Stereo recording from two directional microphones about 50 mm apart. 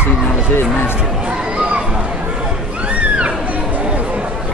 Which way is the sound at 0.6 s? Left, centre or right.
Left.